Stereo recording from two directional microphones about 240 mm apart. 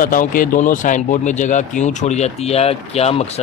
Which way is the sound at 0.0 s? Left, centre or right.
Left.